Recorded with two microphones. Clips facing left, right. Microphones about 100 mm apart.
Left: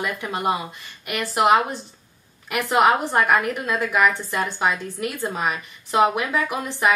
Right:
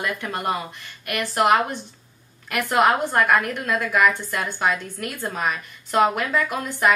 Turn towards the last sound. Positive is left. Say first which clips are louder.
# even
turn(degrees=15)  # may be behind; listen again after turning